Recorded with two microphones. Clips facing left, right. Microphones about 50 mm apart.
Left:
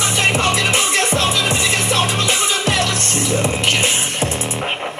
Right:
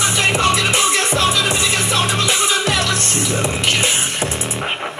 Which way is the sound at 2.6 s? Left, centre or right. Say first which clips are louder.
Even; left.